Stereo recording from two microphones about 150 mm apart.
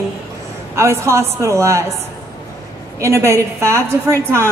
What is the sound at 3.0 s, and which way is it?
Speech, 20° right (ahead or behind).